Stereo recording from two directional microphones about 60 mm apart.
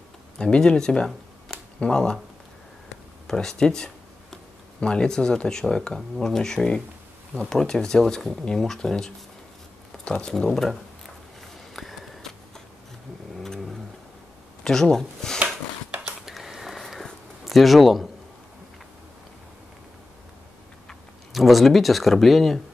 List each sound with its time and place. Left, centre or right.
0.4 s speech: centre
3.3 s speech: centre
11.7 s a sound: centre
13.4 s vehicle: centre
14.6 s speech: centre
15.9 s a sound: centre
16.3 s a sound: centre
17.5 s speech: centre
21.3 s speech: centre